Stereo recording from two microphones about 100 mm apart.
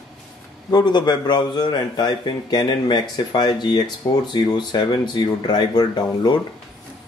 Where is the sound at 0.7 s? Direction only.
45° left (ahead or behind).